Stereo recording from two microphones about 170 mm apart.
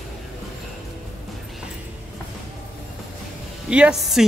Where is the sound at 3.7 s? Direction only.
5° right (ahead or behind).